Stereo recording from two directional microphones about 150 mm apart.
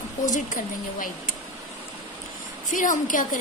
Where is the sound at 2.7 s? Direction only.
60° left (ahead or behind).